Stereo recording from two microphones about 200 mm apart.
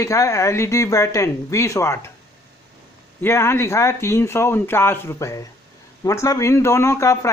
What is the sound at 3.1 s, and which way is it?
A man's voice, 10° left (ahead or behind).